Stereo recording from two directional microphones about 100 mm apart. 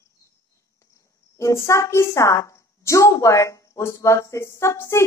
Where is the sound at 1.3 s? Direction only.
30° left (ahead or behind).